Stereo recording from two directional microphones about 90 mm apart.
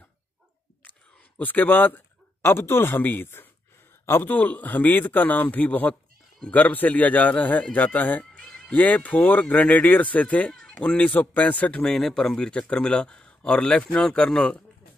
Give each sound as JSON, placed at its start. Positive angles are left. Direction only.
{"t": 1.4, "sound": "a man's voice", "side_deg": 20}